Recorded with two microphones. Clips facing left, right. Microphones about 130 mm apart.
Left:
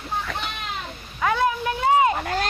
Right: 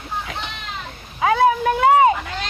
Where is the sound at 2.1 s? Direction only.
45° left (ahead or behind).